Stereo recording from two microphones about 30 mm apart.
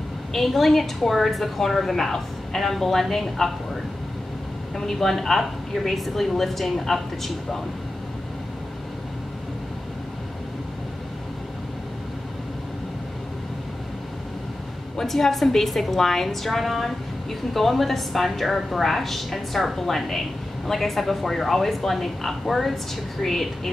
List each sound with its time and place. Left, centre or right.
0.3 s a woman's voice: centre
4.7 s a woman's voice: centre
15.0 s a woman's voice: centre